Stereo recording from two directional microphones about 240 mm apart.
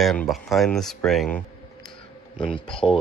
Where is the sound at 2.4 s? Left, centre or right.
Left.